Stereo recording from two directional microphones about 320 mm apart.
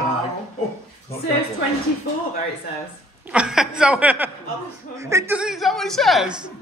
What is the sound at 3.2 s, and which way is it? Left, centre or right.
A man's voice, centre.